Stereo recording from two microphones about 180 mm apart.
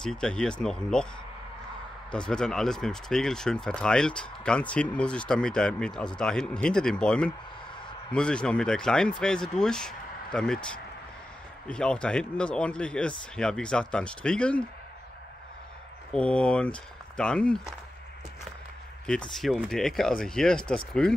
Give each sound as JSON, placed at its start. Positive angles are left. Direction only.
{"t": 0.0, "sound": "speech", "side_deg": 5}
{"t": 2.0, "sound": "speech", "side_deg": 5}
{"t": 16.1, "sound": "speech", "side_deg": 5}
{"t": 19.3, "sound": "speech", "side_deg": 0}